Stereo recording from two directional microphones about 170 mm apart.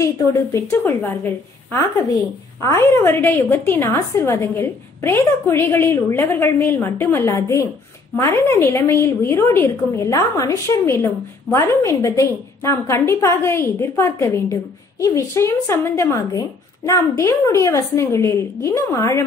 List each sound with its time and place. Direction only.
0.0 s a woman's voice: 20° left (ahead or behind)